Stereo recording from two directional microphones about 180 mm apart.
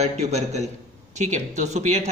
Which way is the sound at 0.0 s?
35° right (ahead or behind).